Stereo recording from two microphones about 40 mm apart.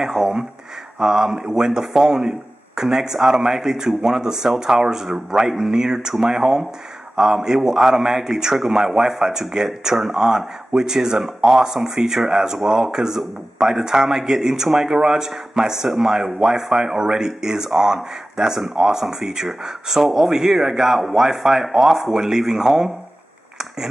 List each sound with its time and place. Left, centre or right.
0.0 s speech: centre